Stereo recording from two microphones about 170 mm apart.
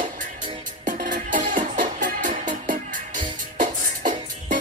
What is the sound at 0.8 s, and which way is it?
Music, 50° right (ahead or behind).